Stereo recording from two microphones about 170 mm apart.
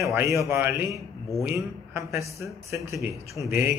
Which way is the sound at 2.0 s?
15° right (ahead or behind).